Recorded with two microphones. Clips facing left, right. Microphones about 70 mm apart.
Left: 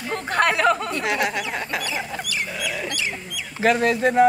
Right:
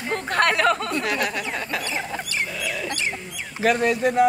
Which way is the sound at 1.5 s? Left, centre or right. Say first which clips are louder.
Left 1 dB; left.